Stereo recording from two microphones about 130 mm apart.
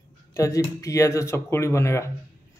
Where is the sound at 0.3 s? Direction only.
25° left (ahead or behind).